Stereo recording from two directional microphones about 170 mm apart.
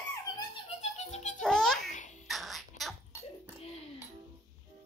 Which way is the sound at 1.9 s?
45° left (ahead or behind).